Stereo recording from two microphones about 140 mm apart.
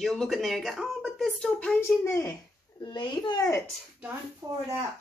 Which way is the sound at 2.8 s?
35° left (ahead or behind).